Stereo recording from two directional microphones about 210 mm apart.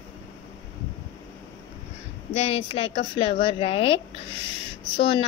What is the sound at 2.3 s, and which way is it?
Speech, 30° left (ahead or behind).